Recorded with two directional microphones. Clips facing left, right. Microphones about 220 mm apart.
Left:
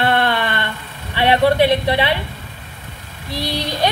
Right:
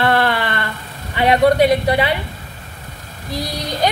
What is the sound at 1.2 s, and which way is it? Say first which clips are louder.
Speech: right 1 dB; 30° left (ahead or behind).